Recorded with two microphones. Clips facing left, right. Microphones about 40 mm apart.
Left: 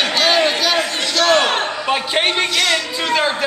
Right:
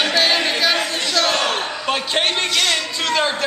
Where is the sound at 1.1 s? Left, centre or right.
Left.